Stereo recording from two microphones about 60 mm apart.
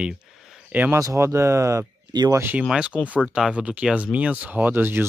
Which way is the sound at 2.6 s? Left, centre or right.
Centre.